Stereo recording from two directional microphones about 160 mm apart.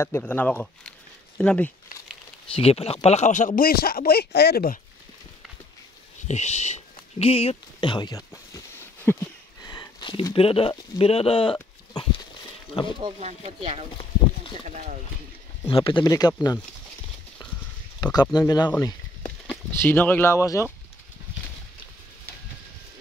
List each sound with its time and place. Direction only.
0.0 s speech: 15° left (ahead or behind)
2.5 s speech: 40° left (ahead or behind); by 4.7 s 80° left
6.2 s speech: 45° left (ahead or behind); by 8.4 s 25° left (ahead or behind)
9.0 s a sound: 15° left (ahead or behind)
9.7 s speech: 25° left (ahead or behind)
11.9 s dog: 25° left (ahead or behind)
13.0 s speech: 45° right (ahead or behind)
15.7 s speech: 30° left (ahead or behind)
18.0 s speech: 25° left (ahead or behind)
19.2 s speech: 5° left (ahead or behind)